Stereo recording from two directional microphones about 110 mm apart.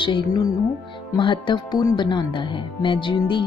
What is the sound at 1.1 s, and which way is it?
Speech, 45° left (ahead or behind).